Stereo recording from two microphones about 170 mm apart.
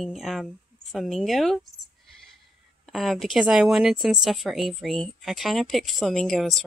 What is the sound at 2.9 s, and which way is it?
Speech, centre (ahead or behind).